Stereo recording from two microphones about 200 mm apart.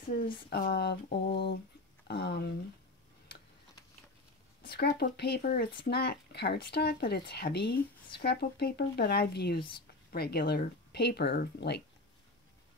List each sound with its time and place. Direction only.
0.5 s speech: 55° left (ahead or behind)
4.6 s speech: 50° left (ahead or behind)